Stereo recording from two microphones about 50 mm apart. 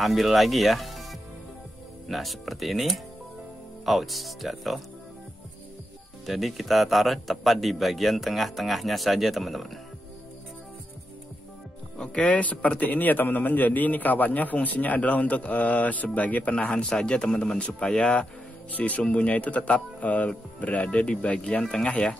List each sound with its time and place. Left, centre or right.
0.0 s speech: centre
2.0 s speech: centre
6.2 s speech: centre
12.2 s a man's voice: left
18.7 s a man's voice: left